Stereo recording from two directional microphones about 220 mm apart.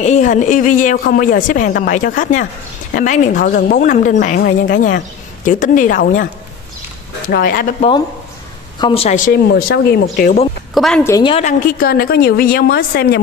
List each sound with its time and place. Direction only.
0.0 s a woman's voice: 35° left (ahead or behind)
7.2 s a woman's voice: 40° left (ahead or behind)
8.7 s a woman's voice: 25° left (ahead or behind); by 10.3 s 45° left (ahead or behind)
10.7 s a woman's voice: centre (ahead or behind)
11.1 s a woman's voice: 15° left (ahead or behind)
11.3 s speech: 35° left (ahead or behind)